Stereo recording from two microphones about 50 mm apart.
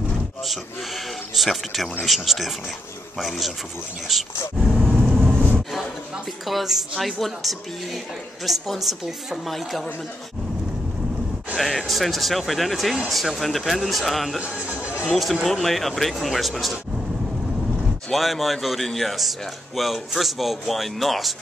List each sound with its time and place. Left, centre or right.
0.5 s a man's voice: centre
4.8 s vehicle: centre
6.4 s a man's voice: centre
11.5 s a man's voice: centre
14.4 s speech: right
15.0 s a man's voice: centre
18.1 s a man's voice: centre